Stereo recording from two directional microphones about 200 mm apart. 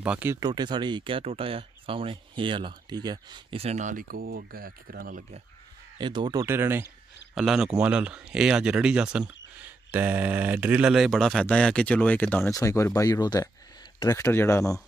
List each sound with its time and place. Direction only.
0.0 s speech: 10° right (ahead or behind); by 5.2 s 45° right (ahead or behind)
5.9 s speech: 20° right (ahead or behind); by 14.8 s 15° left (ahead or behind)